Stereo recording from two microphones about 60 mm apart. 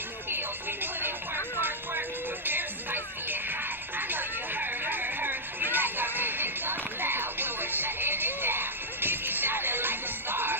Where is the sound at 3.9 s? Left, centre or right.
Right.